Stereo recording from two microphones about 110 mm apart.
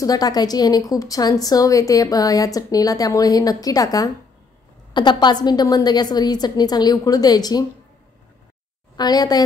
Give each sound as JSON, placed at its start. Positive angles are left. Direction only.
{"t": 0.0, "sound": "a woman's voice", "side_deg": 35}
{"t": 8.9, "sound": "a woman's voice", "side_deg": 40}